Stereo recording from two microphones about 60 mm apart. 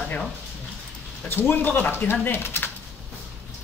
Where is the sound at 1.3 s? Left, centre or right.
Left.